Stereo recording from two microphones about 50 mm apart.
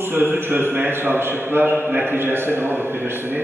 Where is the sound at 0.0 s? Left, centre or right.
Right.